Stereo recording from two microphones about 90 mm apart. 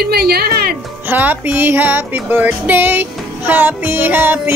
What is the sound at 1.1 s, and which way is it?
Music, 20° right (ahead or behind).